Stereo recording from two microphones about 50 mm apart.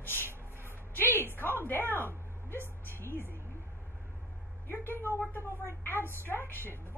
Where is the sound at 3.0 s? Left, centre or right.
Left.